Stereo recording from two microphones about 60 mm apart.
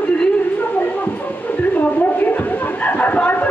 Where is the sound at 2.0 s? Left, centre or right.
Left.